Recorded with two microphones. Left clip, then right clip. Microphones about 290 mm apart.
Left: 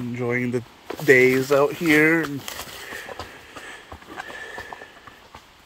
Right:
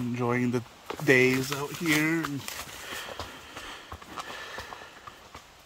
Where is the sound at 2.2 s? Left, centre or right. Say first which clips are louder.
Left 5 dB; left.